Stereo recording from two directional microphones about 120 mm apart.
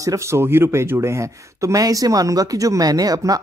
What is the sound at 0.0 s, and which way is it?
Speech, 25° right (ahead or behind).